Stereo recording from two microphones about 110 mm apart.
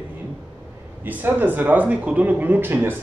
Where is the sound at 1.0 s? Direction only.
15° right (ahead or behind).